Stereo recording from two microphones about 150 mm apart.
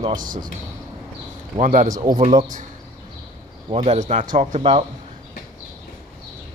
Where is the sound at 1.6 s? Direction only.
55° right (ahead or behind).